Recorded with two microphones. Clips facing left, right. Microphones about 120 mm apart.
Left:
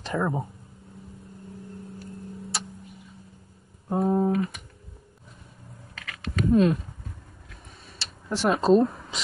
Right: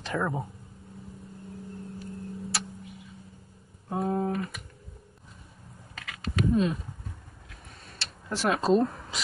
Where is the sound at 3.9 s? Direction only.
10° left (ahead or behind).